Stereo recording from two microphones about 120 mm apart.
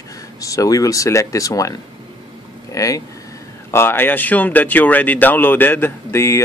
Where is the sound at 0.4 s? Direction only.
30° left (ahead or behind).